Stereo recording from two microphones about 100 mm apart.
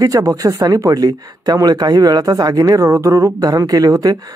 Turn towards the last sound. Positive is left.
turn(degrees=-40)  # may be behind; listen again after turning